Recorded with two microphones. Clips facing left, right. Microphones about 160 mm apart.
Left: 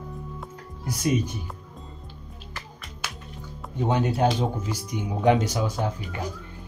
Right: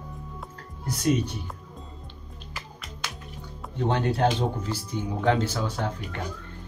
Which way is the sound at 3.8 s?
10° left (ahead or behind).